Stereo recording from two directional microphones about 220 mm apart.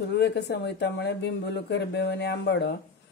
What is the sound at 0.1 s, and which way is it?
A man's voice, 50° left (ahead or behind).